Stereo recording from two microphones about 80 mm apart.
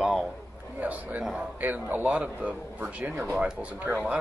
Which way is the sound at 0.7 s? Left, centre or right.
Centre.